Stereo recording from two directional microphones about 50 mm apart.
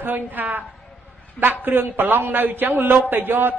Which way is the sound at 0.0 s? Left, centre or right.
Right.